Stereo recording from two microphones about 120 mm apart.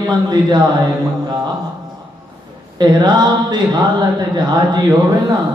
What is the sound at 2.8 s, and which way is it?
Mantra, 35° right (ahead or behind).